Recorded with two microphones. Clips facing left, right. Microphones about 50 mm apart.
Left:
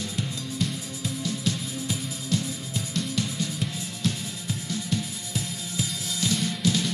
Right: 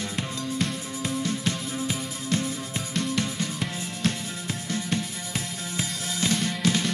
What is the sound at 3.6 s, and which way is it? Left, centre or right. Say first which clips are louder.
Music: right 1 dB; right.